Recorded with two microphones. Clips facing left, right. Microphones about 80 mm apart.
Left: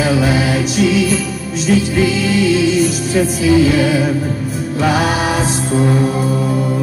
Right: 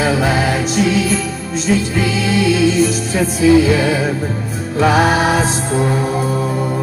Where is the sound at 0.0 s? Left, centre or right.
Right.